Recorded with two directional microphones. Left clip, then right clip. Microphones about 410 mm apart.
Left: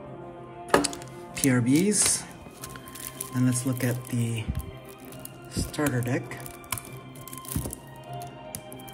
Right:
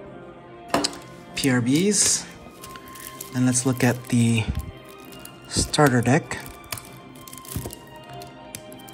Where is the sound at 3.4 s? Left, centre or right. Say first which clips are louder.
Right 6 dB; centre.